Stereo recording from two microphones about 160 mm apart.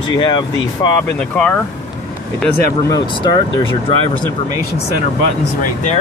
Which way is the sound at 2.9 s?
30° left (ahead or behind).